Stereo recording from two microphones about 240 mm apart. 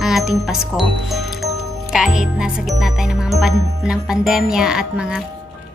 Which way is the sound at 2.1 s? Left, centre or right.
Centre.